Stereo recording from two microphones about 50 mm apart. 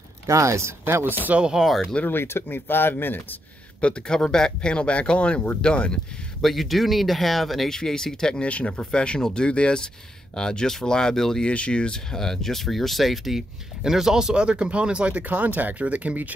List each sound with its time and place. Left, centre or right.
0.3 s speech: right
1.4 s speech: centre
2.0 s speech: left
3.8 s speech: centre
6.4 s speech: centre
8.4 s speech: left; by 11.4 s centre
11.4 s speech: left; by 16.3 s right